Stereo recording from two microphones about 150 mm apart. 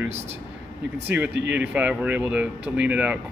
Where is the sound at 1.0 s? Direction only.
10° right (ahead or behind).